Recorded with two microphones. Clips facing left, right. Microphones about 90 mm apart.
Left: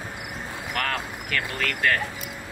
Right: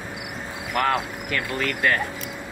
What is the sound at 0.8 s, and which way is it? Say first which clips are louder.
Speech: right 7 dB; 25° right (ahead or behind).